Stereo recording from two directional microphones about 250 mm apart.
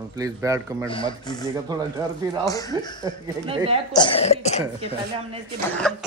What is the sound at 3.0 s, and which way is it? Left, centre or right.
Speech, centre.